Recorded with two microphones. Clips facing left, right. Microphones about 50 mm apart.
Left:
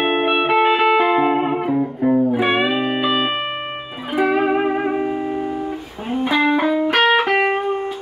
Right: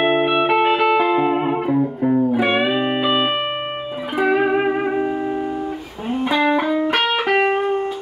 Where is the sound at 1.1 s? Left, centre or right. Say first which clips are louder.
Left 1 dB; centre.